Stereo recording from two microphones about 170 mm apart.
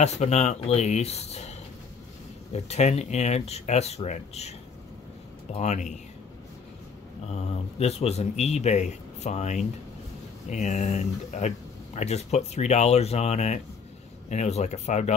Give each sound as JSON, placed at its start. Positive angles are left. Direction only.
{"t": 0.0, "sound": "speech", "side_deg": 40}
{"t": 2.5, "sound": "speech", "side_deg": 40}
{"t": 7.2, "sound": "speech", "side_deg": 40}